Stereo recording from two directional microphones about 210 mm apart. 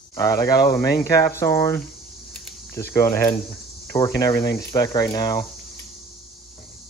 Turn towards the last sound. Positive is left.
turn(degrees=15)  # may be behind; listen again after turning